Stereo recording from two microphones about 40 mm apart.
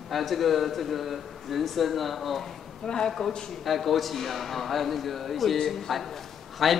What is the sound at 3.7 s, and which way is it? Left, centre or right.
A man's voice, centre.